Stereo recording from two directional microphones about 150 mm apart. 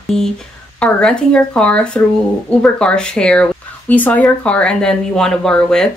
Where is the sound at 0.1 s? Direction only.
5° left (ahead or behind).